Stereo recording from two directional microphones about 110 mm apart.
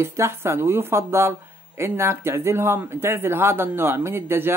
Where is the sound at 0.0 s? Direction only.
25° right (ahead or behind).